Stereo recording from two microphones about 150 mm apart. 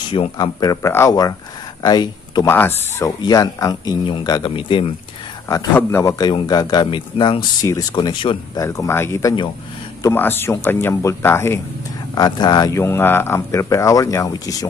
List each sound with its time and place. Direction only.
0.1 s speech: 30° left (ahead or behind)
2.4 s speech: 15° left (ahead or behind)
3.2 s speech: 25° left (ahead or behind)
5.8 s speech: 15° left (ahead or behind); by 8.4 s 35° left (ahead or behind)
8.5 s speech: 20° left (ahead or behind)
12.2 s speech: 30° left (ahead or behind)